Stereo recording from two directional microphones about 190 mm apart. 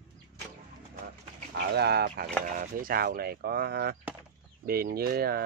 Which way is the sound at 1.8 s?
60° right (ahead or behind).